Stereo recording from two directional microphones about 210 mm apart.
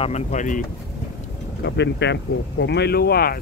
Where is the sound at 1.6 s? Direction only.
55° left (ahead or behind).